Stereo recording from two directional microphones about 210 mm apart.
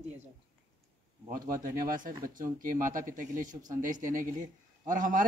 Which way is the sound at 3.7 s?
40° right (ahead or behind).